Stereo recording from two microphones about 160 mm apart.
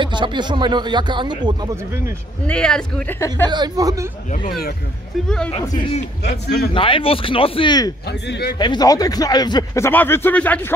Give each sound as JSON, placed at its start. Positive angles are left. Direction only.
{"t": 0.0, "sound": "speech", "side_deg": -30}
{"t": 2.4, "sound": "speech", "side_deg": 5}
{"t": 3.4, "sound": "speech", "side_deg": -25}
{"t": 5.5, "sound": "a man's voice", "side_deg": 40}
{"t": 6.7, "sound": "speech", "side_deg": 35}
{"t": 8.1, "sound": "speech", "side_deg": 90}
{"t": 8.5, "sound": "speech", "side_deg": 25}